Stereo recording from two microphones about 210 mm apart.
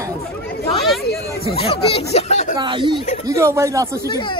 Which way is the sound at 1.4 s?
25° left (ahead or behind).